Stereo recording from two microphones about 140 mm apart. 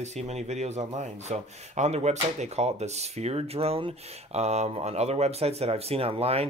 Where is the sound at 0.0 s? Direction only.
55° right (ahead or behind).